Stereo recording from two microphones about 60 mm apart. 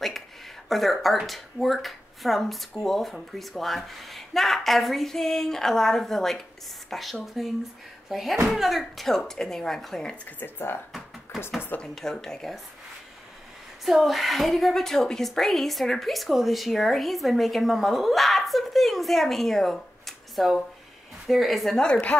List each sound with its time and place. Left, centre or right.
0.7 s a woman's voice: centre
10.2 s speech: left
11.3 s a sound: centre
11.8 s a woman's voice: centre
13.8 s a woman's voice: centre